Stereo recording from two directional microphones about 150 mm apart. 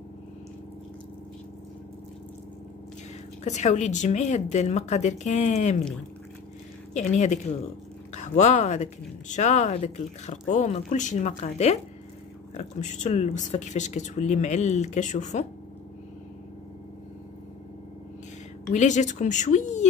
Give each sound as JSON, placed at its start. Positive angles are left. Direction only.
{"t": 3.4, "sound": "speech", "side_deg": 50}
{"t": 6.9, "sound": "speech", "side_deg": 50}
{"t": 18.7, "sound": "speech", "side_deg": 55}